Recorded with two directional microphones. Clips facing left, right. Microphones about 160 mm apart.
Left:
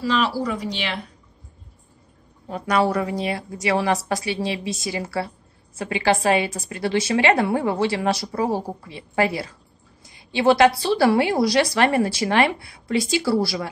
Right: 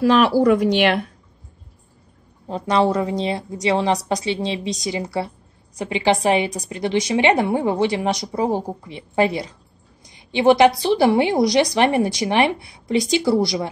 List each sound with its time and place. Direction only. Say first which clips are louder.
0.0 s speech: right 8 dB; 55° right (ahead or behind)
2.4 s a woman's voice: right 2 dB; 25° right (ahead or behind)